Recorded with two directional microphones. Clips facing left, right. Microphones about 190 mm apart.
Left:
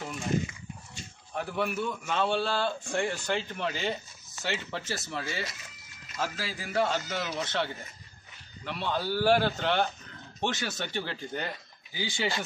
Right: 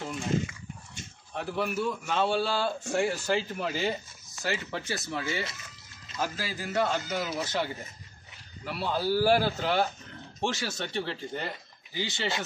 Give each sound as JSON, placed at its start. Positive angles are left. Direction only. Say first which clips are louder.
{"t": 1.3, "sound": "a man's voice", "louder": "even", "side_deg": 0}
{"t": 12.1, "sound": "speech", "louder": "left 3 dB", "side_deg": -20}